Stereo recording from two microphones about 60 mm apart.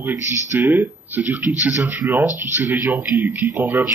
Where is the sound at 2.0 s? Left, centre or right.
Right.